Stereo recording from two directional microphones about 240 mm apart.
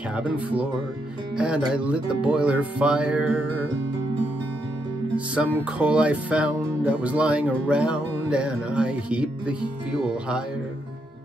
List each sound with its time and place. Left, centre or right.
0.1 s speech: centre
5.1 s speech: centre